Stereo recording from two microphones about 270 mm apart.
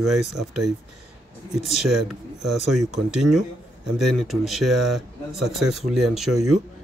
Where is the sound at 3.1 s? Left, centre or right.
Right.